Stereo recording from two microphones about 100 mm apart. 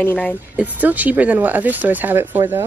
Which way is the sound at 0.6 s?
15° right (ahead or behind).